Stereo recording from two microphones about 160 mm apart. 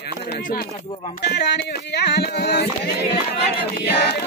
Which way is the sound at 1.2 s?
90° left.